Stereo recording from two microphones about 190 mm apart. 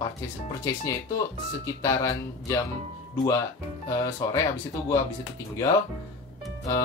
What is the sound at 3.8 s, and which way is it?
Speech, 15° left (ahead or behind).